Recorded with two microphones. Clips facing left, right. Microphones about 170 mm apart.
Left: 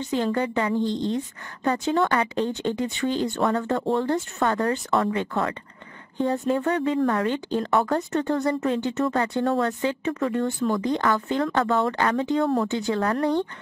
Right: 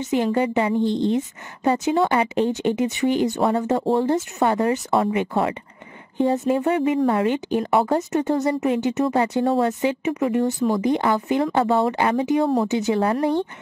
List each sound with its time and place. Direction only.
0.0 s speech: 20° right (ahead or behind)
0.8 s speech: 15° left (ahead or behind)
1.1 s speech: 20° right (ahead or behind)